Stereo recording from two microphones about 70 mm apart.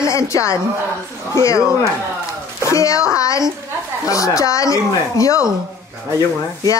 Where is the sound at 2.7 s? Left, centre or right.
Left.